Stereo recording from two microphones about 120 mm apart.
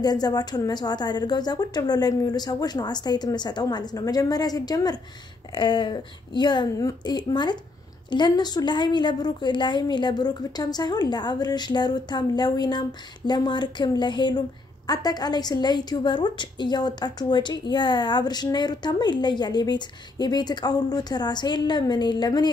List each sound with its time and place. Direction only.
0.0 s a woman's voice: 35° left (ahead or behind)